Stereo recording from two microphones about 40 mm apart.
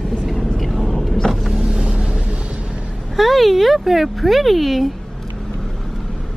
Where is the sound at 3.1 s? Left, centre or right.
Centre.